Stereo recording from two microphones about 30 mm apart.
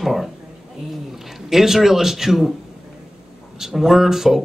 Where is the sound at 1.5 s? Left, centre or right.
Centre.